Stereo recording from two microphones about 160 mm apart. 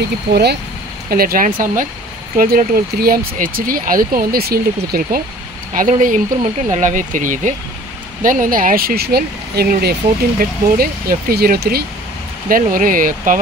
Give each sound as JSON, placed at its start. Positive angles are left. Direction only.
{"t": 0.3, "sound": "speech", "side_deg": -90}
{"t": 1.1, "sound": "speech", "side_deg": -65}
{"t": 5.7, "sound": "speech", "side_deg": -55}
{"t": 12.4, "sound": "speech", "side_deg": -60}